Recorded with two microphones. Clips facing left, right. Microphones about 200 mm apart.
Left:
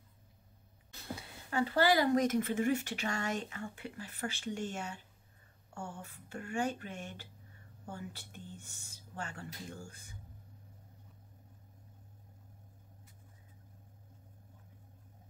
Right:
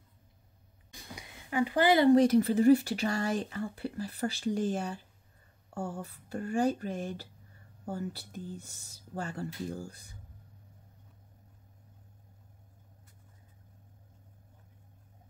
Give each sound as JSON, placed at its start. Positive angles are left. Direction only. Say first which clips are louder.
{"t": 0.9, "sound": "speech", "louder": "left 3 dB", "side_deg": -15}